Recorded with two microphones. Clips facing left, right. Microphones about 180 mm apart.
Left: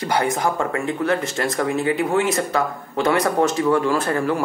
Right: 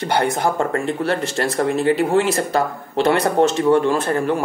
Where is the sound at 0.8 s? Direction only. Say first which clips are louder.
Right 1 dB; 30° right (ahead or behind).